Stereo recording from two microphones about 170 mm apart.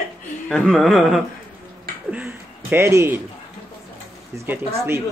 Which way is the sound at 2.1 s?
10° right (ahead or behind).